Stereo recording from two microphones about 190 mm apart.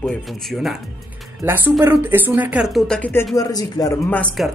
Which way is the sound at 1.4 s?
10° right (ahead or behind).